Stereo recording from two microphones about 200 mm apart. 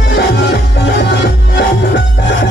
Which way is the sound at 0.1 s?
60° left (ahead or behind).